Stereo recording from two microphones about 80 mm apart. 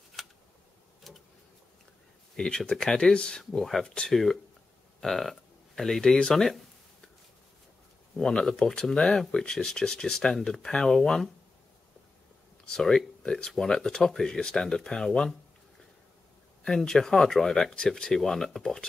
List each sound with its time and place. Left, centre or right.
0.2 s a sound: centre
1.1 s vehicle: centre
2.3 s speech: centre
8.2 s speech: centre
12.6 s speech: centre
16.6 s speech: centre